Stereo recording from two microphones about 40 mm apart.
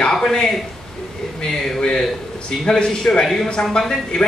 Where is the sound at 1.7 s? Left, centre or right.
Centre.